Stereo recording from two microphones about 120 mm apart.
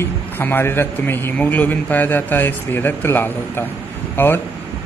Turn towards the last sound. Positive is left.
turn(degrees=20)  # may be behind; listen again after turning